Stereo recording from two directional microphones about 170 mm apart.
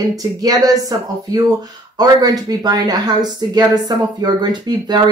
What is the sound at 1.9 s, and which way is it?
Speech, 25° right (ahead or behind).